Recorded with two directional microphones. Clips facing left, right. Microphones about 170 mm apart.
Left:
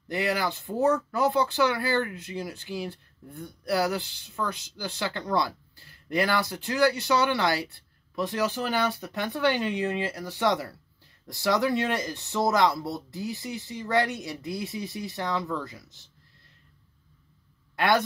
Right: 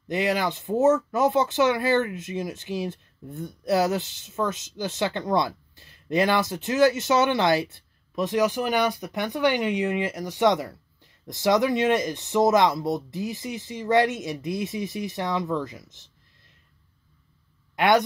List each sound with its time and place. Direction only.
0.1 s speech: 20° right (ahead or behind)
17.7 s speech: 20° right (ahead or behind)